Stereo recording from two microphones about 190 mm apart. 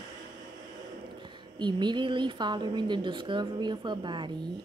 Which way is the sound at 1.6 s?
25° right (ahead or behind).